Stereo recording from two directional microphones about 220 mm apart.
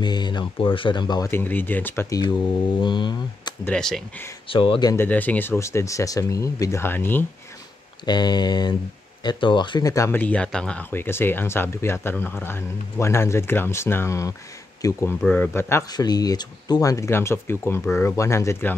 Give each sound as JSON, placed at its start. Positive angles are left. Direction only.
{"t": 0.0, "sound": "speech", "side_deg": 20}
{"t": 3.6, "sound": "speech", "side_deg": 5}
{"t": 4.5, "sound": "speech", "side_deg": 20}